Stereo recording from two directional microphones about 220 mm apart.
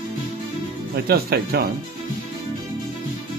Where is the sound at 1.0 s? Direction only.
45° right (ahead or behind).